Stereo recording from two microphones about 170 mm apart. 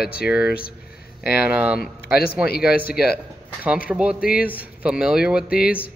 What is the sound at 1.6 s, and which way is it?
Speech, 10° right (ahead or behind).